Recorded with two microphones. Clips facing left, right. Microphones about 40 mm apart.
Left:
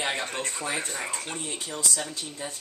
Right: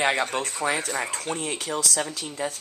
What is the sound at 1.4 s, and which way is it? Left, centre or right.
Speech, right.